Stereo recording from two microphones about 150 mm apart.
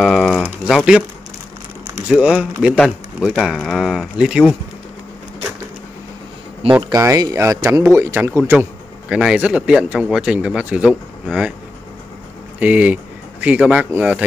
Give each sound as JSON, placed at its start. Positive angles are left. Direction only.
{"t": 0.0, "sound": "a sound", "side_deg": 0}
{"t": 0.7, "sound": "speech", "side_deg": -5}
{"t": 2.0, "sound": "speech", "side_deg": -10}
{"t": 6.6, "sound": "speech", "side_deg": -40}
{"t": 7.0, "sound": "a man's voice", "side_deg": -20}
{"t": 12.5, "sound": "speech", "side_deg": -10}